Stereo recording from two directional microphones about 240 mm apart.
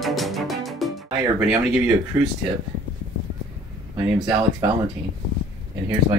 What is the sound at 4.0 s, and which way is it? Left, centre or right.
Speech, centre.